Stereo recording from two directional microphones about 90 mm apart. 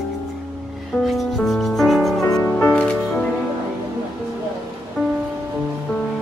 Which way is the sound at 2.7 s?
10° left (ahead or behind).